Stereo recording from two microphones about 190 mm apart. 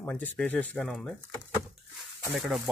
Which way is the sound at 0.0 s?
10° left (ahead or behind).